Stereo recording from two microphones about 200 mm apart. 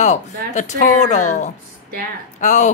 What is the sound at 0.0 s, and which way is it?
A woman's voice, 35° left (ahead or behind).